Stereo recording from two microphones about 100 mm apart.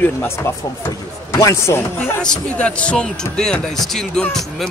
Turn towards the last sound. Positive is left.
turn(degrees=5)  # may be behind; listen again after turning